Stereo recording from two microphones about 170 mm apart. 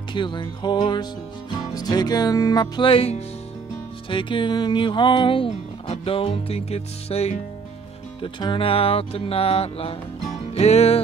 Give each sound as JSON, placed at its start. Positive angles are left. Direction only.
{"t": 0.1, "sound": "music", "side_deg": 25}
{"t": 4.1, "sound": "speech", "side_deg": 30}
{"t": 10.5, "sound": "music", "side_deg": 40}